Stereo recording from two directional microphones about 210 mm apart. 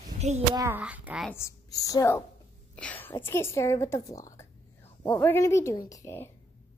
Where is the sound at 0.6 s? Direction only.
10° right (ahead or behind).